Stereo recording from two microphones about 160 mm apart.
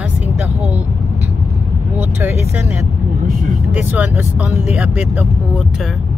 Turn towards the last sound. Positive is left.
turn(degrees=-10)  # may be behind; listen again after turning